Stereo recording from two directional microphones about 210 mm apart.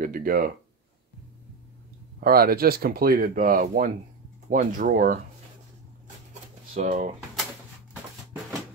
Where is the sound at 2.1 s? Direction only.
45° right (ahead or behind).